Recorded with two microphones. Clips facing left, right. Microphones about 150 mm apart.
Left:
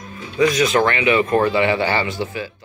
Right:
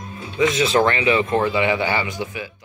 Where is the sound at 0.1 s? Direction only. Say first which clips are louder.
Left 2 dB; 20° right (ahead or behind).